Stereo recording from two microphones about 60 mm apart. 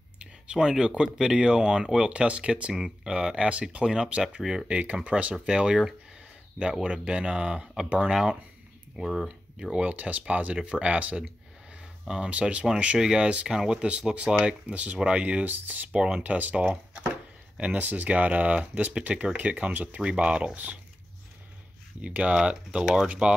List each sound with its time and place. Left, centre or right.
0.2 s speech: centre
4.6 s speech: right; by 9.7 s centre
9.7 s speech: right
22.0 s speech: right